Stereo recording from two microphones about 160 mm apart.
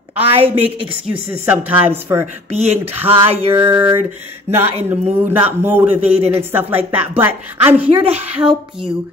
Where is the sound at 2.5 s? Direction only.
40° right (ahead or behind).